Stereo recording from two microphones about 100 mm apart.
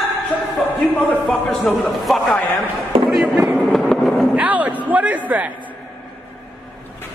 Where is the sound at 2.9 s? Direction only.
70° right (ahead or behind).